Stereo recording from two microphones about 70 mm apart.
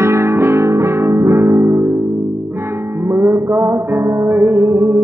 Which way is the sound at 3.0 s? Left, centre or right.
Right.